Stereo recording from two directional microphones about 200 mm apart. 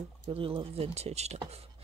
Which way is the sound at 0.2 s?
25° right (ahead or behind).